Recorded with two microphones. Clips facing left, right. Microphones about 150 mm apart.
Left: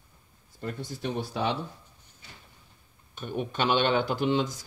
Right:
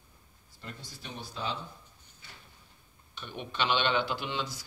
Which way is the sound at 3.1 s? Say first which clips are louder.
Left 8 dB; 45° left (ahead or behind).